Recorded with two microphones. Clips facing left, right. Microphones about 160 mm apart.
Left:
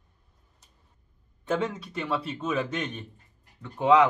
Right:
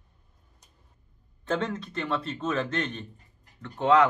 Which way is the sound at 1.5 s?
10° left (ahead or behind).